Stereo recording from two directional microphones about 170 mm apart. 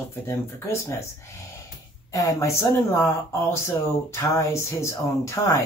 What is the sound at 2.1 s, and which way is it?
Speech, 20° left (ahead or behind).